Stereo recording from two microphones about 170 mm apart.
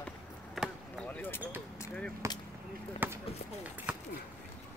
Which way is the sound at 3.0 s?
10° right (ahead or behind).